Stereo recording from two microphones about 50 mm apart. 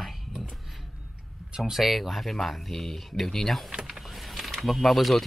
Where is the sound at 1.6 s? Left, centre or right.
Centre.